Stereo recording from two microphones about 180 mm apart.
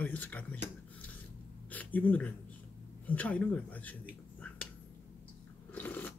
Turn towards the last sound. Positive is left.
turn(degrees=10)  # may be behind; listen again after turning